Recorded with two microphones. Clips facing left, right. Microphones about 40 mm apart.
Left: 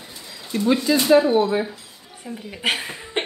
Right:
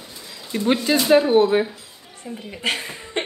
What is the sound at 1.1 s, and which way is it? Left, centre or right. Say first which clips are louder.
Speech: right 2 dB; right.